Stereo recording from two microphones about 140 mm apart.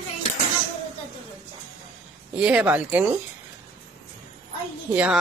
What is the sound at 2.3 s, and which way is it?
Speech, 5° right (ahead or behind).